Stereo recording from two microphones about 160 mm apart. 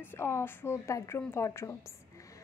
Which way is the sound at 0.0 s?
15° left (ahead or behind).